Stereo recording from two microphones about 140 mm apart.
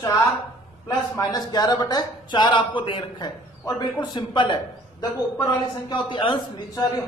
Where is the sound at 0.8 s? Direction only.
30° left (ahead or behind).